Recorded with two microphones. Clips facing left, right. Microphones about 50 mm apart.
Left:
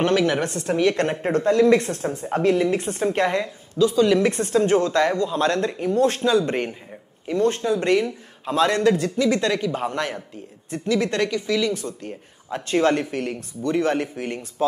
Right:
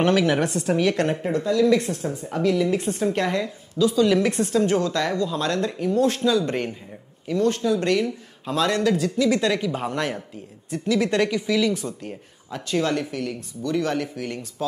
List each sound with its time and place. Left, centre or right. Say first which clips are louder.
0.1 s a woman's voice: even; centre
0.7 s speech: left 3 dB; centre
1.2 s speech: left 5 dB; left
3.0 s speech: left 2 dB; centre
5.9 s speech: left 2 dB; left
6.4 s speech: left 1 dB; centre
7.2 s speech: left 1 dB; left
9.2 s speech: even; centre
12.4 s speech: left 4 dB; left